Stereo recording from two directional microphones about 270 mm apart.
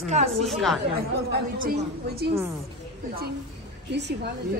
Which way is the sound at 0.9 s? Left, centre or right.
Right.